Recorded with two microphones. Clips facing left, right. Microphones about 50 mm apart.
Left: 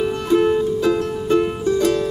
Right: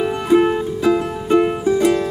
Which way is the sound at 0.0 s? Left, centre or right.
Centre.